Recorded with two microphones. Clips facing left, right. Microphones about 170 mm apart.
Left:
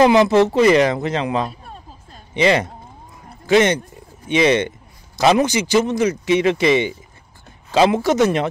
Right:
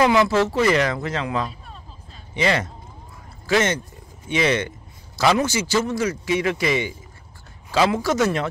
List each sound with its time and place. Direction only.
0.0 s a man's voice: 20° left (ahead or behind)
1.5 s hubbub: 50° left (ahead or behind)
2.3 s a man's voice: 20° left (ahead or behind)
3.3 s a sound: 20° left (ahead or behind)
4.3 s a man's voice: 20° left (ahead or behind)